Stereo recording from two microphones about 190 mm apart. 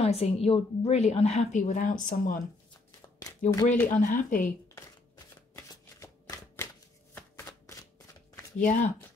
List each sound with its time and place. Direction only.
0.0 s a woman's voice: 30° left (ahead or behind)
2.7 s shuffling cards: 20° left (ahead or behind)
3.6 s speech: 45° left (ahead or behind)
5.6 s shuffling cards: 15° left (ahead or behind)
8.5 s speech: 45° left (ahead or behind)